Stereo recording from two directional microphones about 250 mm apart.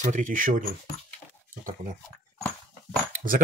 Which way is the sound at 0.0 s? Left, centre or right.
Right.